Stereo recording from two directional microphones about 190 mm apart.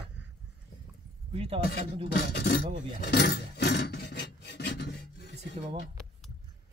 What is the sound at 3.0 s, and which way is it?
Filing, 60° left (ahead or behind).